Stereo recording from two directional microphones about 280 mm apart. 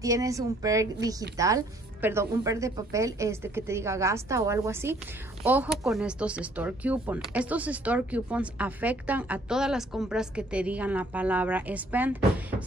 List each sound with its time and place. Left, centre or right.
0.0 s a woman's voice: centre